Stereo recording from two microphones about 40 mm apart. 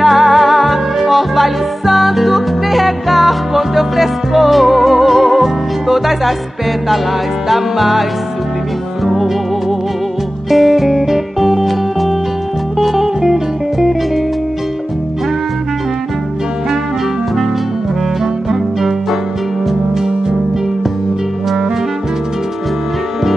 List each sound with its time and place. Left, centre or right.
0.0 s music: centre
7.4 s music: centre
9.0 s music: centre
18.2 s music: centre